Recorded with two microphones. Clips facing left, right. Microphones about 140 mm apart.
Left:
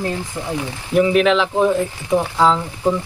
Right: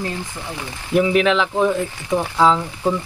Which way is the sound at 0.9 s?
Centre (ahead or behind).